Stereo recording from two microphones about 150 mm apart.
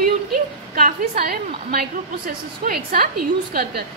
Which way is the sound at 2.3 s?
75° right (ahead or behind).